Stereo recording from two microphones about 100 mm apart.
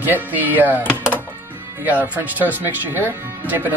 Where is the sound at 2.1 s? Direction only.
15° right (ahead or behind).